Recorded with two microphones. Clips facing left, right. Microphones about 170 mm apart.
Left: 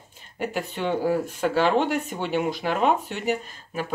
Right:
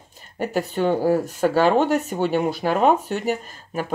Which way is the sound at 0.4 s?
40° right (ahead or behind).